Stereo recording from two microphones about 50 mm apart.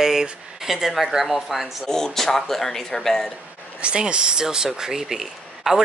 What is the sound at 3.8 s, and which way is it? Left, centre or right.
Speech, centre.